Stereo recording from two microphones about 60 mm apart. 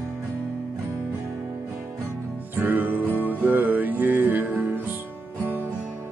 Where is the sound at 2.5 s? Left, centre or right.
Right.